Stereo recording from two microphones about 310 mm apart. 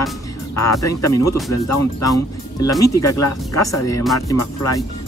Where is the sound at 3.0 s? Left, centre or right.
Left.